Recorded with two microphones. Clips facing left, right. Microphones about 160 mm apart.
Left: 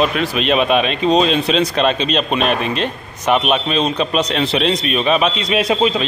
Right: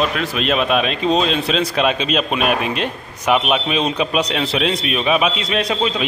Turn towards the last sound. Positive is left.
turn(degrees=10)  # may be behind; listen again after turning